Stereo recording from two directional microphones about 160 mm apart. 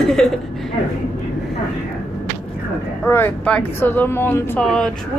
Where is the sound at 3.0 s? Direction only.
10° left (ahead or behind).